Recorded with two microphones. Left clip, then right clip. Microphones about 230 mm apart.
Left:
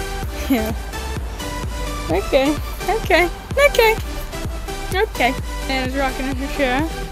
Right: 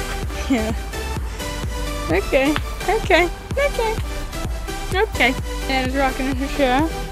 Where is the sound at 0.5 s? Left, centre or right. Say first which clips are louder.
Left 1 dB; centre.